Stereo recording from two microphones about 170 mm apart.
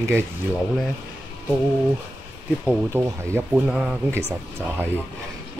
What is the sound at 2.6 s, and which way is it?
Speech, 10° right (ahead or behind).